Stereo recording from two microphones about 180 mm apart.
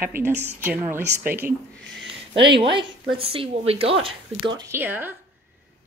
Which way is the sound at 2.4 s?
30° right (ahead or behind).